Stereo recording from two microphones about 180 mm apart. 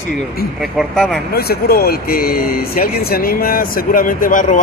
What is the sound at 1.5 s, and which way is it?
Speech, 55° left (ahead or behind).